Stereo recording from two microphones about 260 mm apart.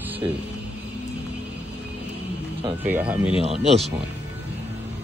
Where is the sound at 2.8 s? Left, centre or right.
Centre.